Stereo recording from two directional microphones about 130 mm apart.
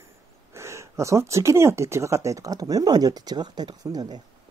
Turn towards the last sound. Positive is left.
turn(degrees=-30)  # may be behind; listen again after turning